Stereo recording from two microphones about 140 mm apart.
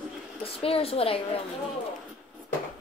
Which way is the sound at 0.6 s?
45° left (ahead or behind).